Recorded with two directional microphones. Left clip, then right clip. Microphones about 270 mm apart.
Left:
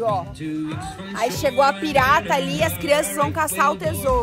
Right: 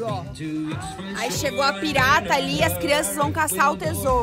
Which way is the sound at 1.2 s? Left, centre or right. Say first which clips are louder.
Left 5 dB; centre.